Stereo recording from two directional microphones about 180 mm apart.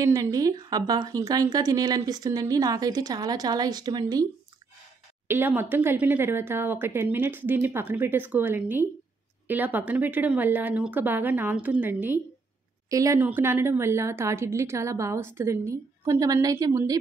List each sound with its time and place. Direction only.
0.0 s a woman's voice: 20° right (ahead or behind)
5.3 s a woman's voice: 10° right (ahead or behind)